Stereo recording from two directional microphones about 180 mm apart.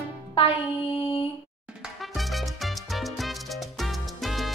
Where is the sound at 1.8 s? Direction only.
Centre (ahead or behind).